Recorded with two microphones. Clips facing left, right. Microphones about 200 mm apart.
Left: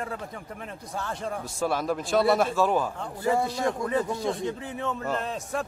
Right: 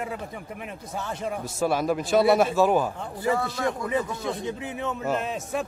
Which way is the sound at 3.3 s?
25° left (ahead or behind).